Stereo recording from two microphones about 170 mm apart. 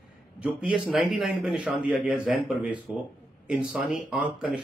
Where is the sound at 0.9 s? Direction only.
5° right (ahead or behind).